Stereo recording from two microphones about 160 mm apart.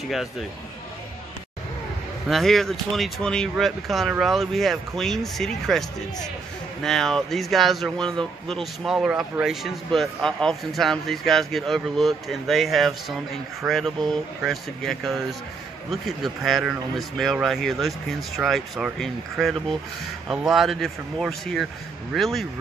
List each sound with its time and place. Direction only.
2.2 s speech: centre (ahead or behind)